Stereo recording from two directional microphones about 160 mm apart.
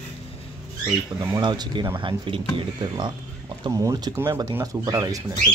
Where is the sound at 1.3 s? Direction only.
25° right (ahead or behind).